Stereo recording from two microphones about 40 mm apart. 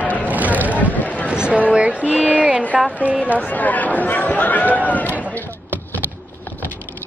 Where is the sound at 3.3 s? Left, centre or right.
Left.